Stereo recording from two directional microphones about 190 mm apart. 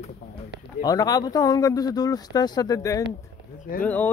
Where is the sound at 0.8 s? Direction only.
20° left (ahead or behind).